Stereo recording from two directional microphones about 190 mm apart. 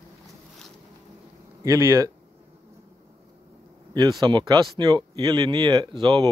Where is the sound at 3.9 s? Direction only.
20° right (ahead or behind).